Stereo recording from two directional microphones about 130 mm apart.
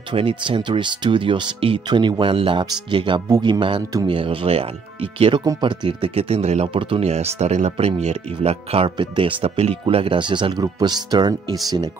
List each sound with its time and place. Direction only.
0.1 s speech: 40° right (ahead or behind)
5.4 s speech: 35° right (ahead or behind)